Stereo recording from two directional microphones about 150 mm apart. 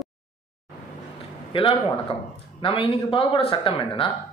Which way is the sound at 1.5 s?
40° left (ahead or behind).